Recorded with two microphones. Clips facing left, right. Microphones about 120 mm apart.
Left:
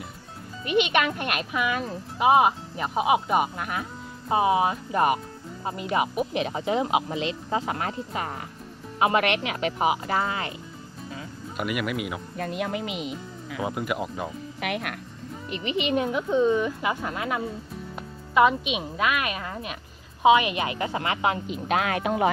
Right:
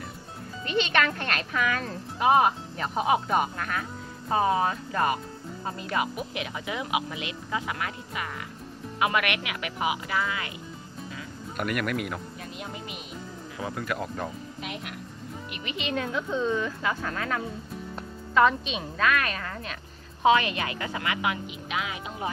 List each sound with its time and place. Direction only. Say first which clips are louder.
0.7 s speech: left 3 dB; 15° left (ahead or behind); by 10.5 s 35° left (ahead or behind)
11.5 s speech: even; 5° left (ahead or behind)
12.4 s speech: left 10 dB; 55° left (ahead or behind)
12.6 s speech: left 9 dB; 90° left
13.6 s speech: left 3 dB; 15° left (ahead or behind)
14.6 s speech: left 8 dB; 65° left (ahead or behind)
15.5 s a woman's voice: left 6 dB; 20° left (ahead or behind); by 22.3 s 65° left (ahead or behind)